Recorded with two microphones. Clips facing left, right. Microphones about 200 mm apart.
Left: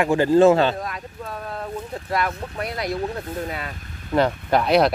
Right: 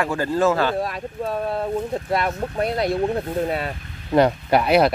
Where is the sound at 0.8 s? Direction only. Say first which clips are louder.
Right 6 dB; 30° right (ahead or behind).